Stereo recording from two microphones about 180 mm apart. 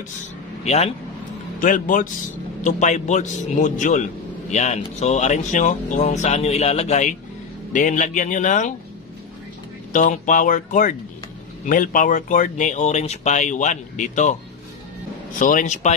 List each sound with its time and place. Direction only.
1.6 s a man's voice: 45° left (ahead or behind)
9.9 s speech: 45° left (ahead or behind)
15.3 s speech: 45° left (ahead or behind)